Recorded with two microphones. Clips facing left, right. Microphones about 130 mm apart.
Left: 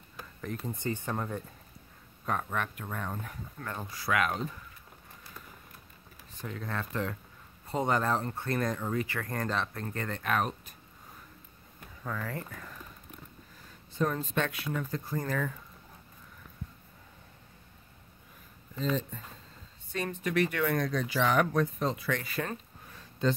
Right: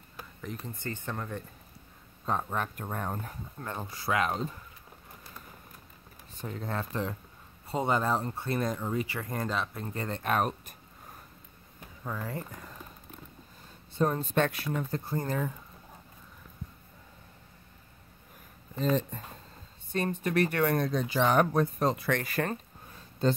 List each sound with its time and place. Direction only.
0.2 s a sound: centre (ahead or behind)
0.7 s speech: 15° left (ahead or behind)
2.2 s speech: 30° right (ahead or behind)
6.4 s speech: 30° right (ahead or behind)
12.0 s speech: 20° right (ahead or behind)
13.9 s speech: 30° right (ahead or behind)
18.8 s speech: 50° right (ahead or behind)
20.8 s speech: 25° right (ahead or behind)
21.7 s speech: 45° right (ahead or behind)